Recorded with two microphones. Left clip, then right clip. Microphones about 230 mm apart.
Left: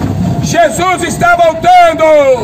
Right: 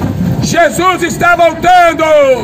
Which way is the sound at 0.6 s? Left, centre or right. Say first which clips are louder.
Even; right.